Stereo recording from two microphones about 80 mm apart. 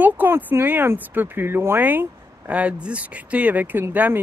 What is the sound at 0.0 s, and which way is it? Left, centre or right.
Speech, right.